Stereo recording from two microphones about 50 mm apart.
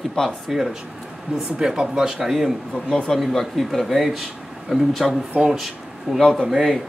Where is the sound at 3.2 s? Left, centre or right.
Centre.